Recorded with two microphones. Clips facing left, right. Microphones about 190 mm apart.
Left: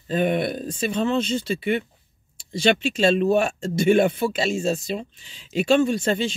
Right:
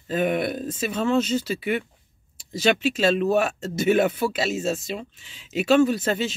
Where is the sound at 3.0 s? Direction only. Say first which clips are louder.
Left 4 dB; 30° left (ahead or behind).